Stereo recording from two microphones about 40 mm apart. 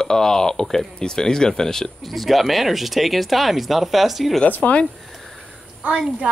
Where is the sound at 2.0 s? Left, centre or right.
Centre.